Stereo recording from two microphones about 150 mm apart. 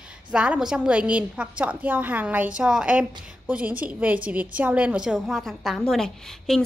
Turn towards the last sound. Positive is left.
turn(degrees=0)  # may be behind; listen again after turning